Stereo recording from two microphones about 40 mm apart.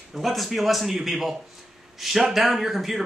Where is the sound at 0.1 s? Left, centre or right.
Centre.